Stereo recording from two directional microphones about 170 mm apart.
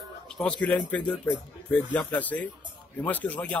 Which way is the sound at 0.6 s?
10° left (ahead or behind).